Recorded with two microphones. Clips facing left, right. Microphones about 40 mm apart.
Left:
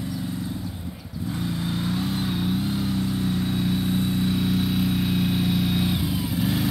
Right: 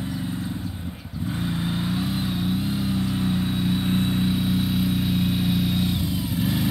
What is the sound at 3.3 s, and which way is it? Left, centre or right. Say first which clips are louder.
Vehicle: right 1 dB; centre.